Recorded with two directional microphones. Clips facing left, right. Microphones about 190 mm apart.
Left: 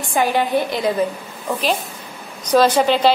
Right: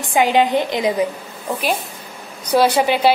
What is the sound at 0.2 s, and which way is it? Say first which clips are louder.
Speech: right 2 dB; 20° right (ahead or behind).